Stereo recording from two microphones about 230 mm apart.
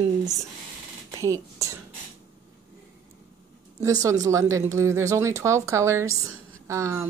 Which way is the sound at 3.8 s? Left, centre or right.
Centre.